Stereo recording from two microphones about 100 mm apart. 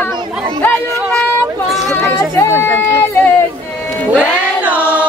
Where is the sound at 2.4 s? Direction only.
25° left (ahead or behind).